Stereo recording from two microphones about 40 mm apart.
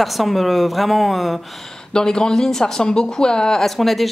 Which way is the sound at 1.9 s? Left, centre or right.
Centre.